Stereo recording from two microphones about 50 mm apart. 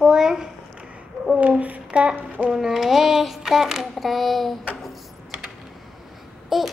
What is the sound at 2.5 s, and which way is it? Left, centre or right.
Child singing, centre.